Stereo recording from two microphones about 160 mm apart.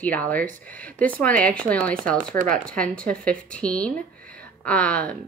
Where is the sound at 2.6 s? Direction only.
5° left (ahead or behind).